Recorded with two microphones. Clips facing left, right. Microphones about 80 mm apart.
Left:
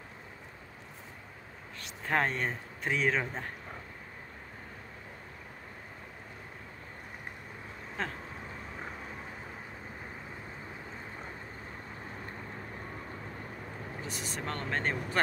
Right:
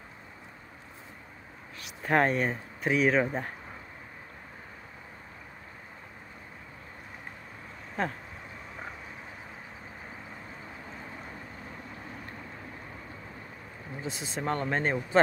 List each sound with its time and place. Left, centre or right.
1.8 s speech: centre
8.0 s speech: centre
14.0 s speech: right